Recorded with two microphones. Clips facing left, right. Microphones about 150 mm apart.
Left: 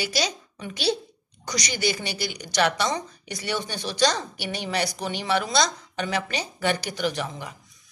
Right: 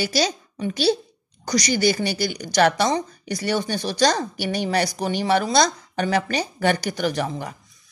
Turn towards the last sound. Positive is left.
turn(degrees=-45)  # may be behind; listen again after turning